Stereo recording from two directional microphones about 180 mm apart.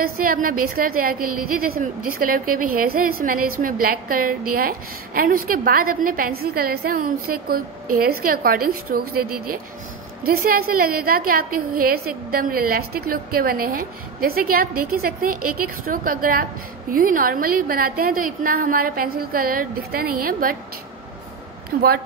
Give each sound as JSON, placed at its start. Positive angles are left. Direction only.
{"t": 0.0, "sound": "a woman's voice", "side_deg": -55}
{"t": 21.7, "sound": "speech", "side_deg": -55}